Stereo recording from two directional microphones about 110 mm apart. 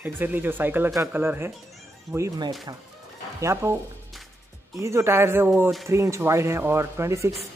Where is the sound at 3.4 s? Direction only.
25° right (ahead or behind).